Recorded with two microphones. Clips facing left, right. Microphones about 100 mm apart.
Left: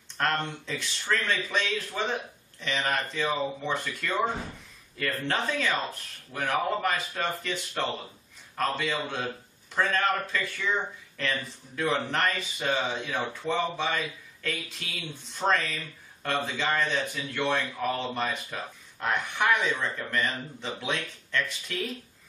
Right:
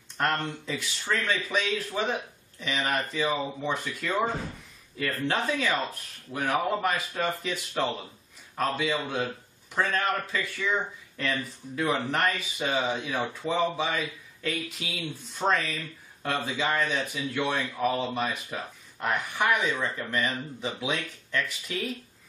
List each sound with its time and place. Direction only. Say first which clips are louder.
0.2 s speech: even; 10° right (ahead or behind)